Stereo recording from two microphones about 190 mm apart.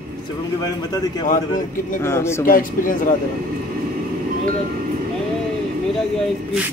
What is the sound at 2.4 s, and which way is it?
Speech, 45° left (ahead or behind).